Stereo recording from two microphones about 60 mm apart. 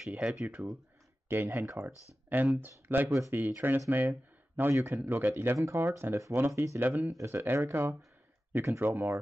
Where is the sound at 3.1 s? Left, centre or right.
Right.